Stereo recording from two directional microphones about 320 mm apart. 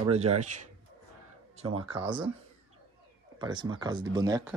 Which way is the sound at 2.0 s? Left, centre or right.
Centre.